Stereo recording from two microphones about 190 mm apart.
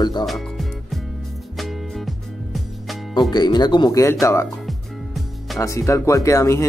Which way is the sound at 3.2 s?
20° left (ahead or behind).